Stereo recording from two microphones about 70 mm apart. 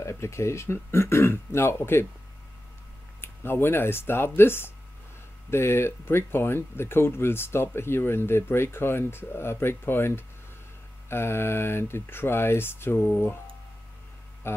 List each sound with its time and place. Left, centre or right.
0.0 s speech: left
3.2 s speech: left
14.4 s music: left